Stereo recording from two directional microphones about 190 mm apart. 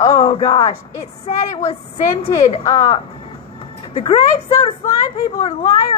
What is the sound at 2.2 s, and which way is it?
A woman's voice, 30° left (ahead or behind).